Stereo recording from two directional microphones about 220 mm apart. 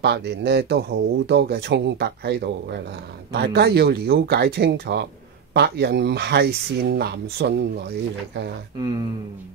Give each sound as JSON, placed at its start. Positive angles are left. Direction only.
{"t": 0.0, "sound": "speech", "side_deg": -50}